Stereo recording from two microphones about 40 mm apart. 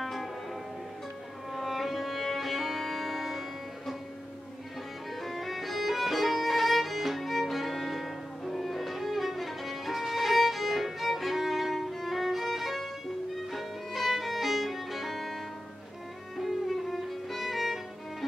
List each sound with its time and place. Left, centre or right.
0.0 s music: centre
1.5 s music: centre
5.1 s violin: centre
16.3 s music: centre